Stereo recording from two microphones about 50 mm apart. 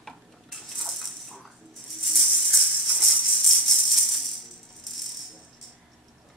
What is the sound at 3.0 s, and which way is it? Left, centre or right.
Music, centre.